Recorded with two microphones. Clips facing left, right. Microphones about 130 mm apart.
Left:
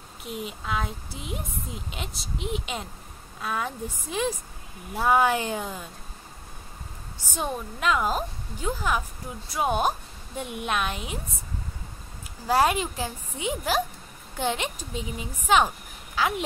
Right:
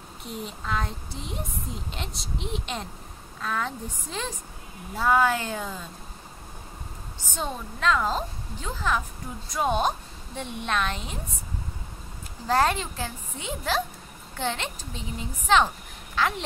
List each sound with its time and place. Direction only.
0.2 s a woman's voice: 5° left (ahead or behind)
7.3 s a woman's voice: 10° left (ahead or behind)
12.4 s a woman's voice: 10° left (ahead or behind)